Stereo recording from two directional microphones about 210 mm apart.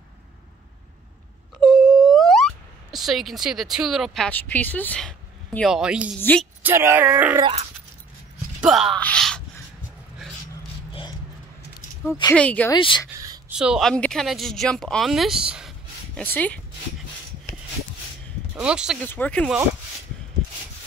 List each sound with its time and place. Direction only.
1.6 s speech: centre (ahead or behind)
8.6 s speech: centre (ahead or behind)
10.9 s a sound: 25° left (ahead or behind)
12.1 s speech: 15° left (ahead or behind)
12.7 s speech: 25° left (ahead or behind)
13.5 s speech: 5° right (ahead or behind)
18.6 s speech: 5° right (ahead or behind)
19.0 s speech: 5° left (ahead or behind)